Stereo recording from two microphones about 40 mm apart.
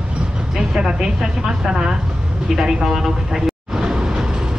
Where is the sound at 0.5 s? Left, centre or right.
Centre.